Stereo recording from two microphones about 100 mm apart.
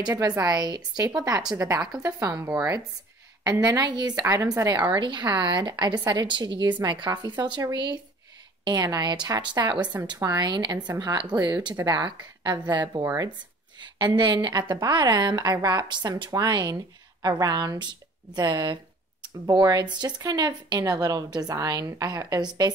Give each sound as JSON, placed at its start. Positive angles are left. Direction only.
{"t": 0.0, "sound": "speech", "side_deg": -40}
{"t": 4.2, "sound": "speech", "side_deg": -35}
{"t": 4.6, "sound": "a woman's voice", "side_deg": -50}
{"t": 13.0, "sound": "speech", "side_deg": -30}
{"t": 14.1, "sound": "a woman's voice", "side_deg": -50}